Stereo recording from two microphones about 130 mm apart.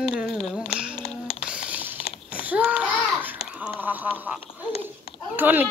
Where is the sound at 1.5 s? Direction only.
10° right (ahead or behind).